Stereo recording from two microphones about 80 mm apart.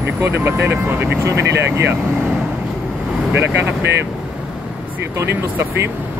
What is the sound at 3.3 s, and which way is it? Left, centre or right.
Speech, right.